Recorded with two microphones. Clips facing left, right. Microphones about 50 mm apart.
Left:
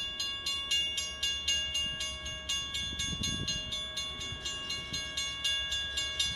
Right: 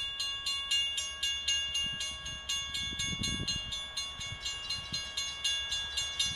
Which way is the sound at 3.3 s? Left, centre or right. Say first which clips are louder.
Even; centre.